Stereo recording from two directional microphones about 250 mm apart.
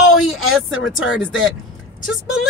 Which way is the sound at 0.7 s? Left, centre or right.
Left.